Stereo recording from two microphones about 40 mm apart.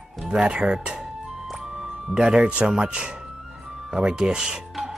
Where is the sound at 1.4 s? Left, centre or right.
Centre.